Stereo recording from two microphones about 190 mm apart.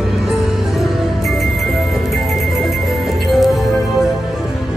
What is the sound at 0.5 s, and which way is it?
Music, centre (ahead or behind).